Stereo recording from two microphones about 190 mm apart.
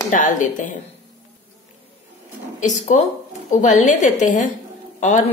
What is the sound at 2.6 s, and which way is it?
A woman's voice, 40° left (ahead or behind).